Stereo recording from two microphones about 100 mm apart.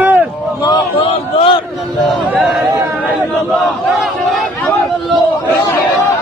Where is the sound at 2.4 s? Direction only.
Centre (ahead or behind).